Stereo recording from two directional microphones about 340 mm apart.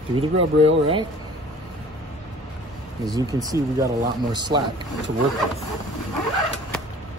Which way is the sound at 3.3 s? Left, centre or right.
Centre.